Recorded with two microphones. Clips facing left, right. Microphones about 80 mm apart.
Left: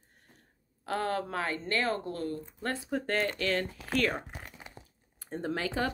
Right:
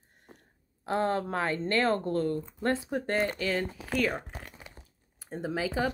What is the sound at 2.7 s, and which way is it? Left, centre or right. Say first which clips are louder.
Speech: right 3 dB; centre.